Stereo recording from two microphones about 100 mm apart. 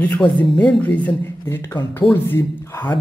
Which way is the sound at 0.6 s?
15° left (ahead or behind).